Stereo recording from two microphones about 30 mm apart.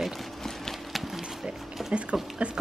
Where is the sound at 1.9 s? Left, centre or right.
Right.